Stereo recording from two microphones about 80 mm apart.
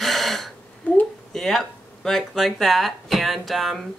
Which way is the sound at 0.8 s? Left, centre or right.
Centre.